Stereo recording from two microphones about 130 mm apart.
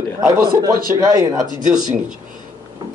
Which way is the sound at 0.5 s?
30° right (ahead or behind).